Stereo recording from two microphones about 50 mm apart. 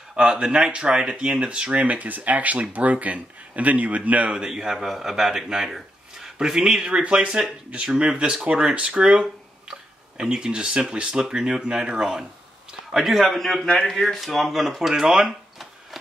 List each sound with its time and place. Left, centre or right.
0.1 s speech: centre
4.3 s speech: centre
6.9 s speech: centre